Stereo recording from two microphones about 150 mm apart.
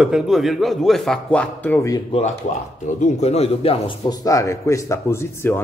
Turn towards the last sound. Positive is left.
turn(degrees=15)  # may be behind; listen again after turning